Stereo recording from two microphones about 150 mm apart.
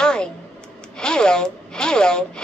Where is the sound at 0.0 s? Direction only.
5° left (ahead or behind).